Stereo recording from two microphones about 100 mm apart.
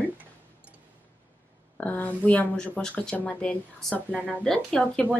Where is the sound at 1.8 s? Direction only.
15° left (ahead or behind).